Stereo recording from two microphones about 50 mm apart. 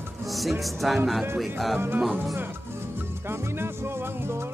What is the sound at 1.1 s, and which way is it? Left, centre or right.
Speech, centre.